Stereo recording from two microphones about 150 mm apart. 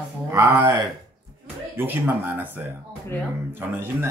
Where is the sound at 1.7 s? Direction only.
15° right (ahead or behind).